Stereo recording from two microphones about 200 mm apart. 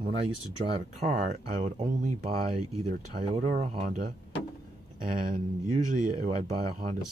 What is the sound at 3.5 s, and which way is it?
Speech, 35° right (ahead or behind).